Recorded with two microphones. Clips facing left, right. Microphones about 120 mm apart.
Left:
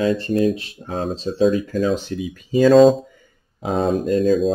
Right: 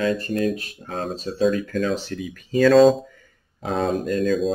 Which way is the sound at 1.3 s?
5° left (ahead or behind).